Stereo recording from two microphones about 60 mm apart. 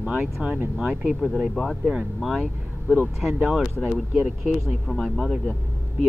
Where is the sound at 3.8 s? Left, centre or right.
Centre.